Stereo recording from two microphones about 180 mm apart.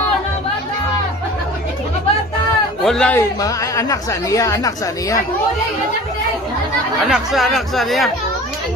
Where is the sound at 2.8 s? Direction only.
5° left (ahead or behind).